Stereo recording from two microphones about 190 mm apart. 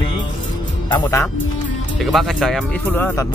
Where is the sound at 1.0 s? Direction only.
15° left (ahead or behind).